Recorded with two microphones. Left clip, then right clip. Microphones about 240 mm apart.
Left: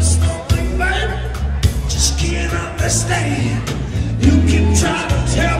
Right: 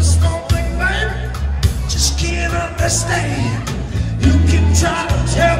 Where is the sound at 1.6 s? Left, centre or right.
Right.